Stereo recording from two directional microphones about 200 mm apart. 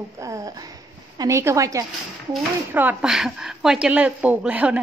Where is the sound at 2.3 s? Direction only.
5° right (ahead or behind).